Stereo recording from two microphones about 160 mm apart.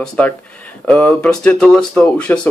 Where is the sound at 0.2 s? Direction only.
10° left (ahead or behind).